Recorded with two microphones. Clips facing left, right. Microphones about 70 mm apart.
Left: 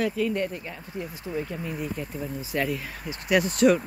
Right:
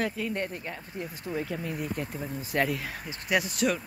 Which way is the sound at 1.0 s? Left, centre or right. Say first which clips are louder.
Left 1 dB; centre.